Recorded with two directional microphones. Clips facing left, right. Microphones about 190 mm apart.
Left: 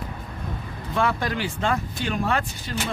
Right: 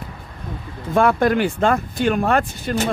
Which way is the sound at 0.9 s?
50° right (ahead or behind).